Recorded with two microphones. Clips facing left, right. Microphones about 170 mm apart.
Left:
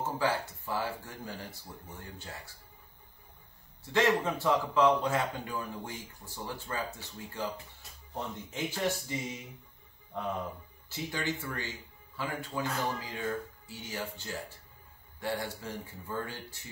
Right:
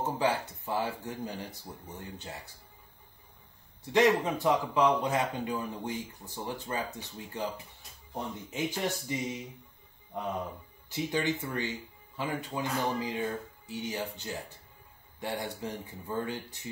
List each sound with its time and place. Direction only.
0.0 s speech: 20° right (ahead or behind)
3.8 s a man's voice: 15° right (ahead or behind)
10.1 s a man's voice: 15° right (ahead or behind)